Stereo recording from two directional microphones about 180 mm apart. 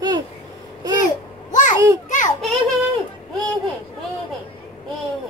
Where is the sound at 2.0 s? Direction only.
45° left (ahead or behind).